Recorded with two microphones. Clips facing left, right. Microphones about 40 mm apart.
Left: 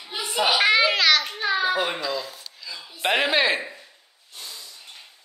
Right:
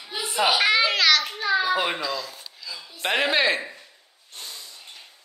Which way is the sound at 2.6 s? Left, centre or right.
Centre.